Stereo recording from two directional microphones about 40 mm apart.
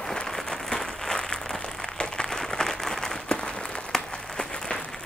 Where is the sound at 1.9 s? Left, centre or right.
Left.